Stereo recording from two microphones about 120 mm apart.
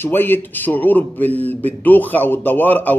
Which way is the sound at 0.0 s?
15° left (ahead or behind).